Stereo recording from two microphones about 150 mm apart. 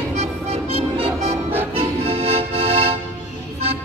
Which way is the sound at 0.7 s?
40° right (ahead or behind).